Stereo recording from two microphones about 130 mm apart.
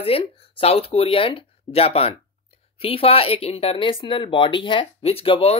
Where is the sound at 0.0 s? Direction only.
45° left (ahead or behind).